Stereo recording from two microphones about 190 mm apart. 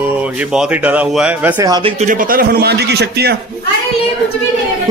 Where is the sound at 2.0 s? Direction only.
45° right (ahead or behind).